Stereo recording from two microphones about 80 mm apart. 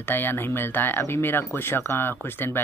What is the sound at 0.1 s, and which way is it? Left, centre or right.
Speech, left.